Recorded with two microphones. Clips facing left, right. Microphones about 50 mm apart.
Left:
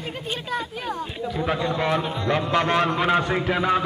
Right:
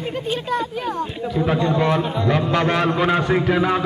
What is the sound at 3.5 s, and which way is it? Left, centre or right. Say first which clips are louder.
Speech: right 2 dB; centre.